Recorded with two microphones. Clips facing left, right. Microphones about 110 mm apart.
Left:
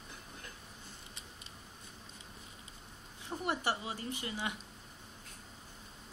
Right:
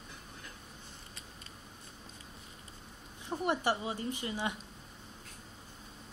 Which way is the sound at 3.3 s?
20° right (ahead or behind).